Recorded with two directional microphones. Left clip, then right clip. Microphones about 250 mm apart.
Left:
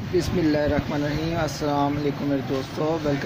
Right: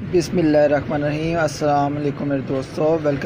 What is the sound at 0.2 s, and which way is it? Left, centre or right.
Speech, centre.